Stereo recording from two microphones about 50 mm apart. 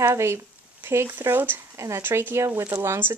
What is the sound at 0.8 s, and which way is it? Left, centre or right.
Speech, right.